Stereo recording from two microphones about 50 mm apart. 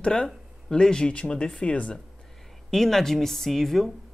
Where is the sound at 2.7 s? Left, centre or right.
Centre.